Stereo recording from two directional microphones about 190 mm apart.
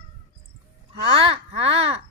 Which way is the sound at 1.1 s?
30° right (ahead or behind).